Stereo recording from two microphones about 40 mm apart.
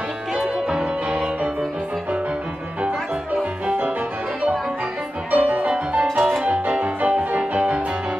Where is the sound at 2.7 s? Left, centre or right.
Right.